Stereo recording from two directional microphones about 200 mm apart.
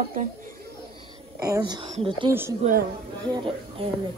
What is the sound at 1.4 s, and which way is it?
Speech, 20° right (ahead or behind).